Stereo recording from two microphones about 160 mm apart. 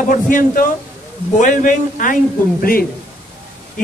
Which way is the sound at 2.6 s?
65° left (ahead or behind).